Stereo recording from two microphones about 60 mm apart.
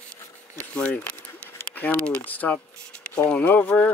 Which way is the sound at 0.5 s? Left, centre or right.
Centre.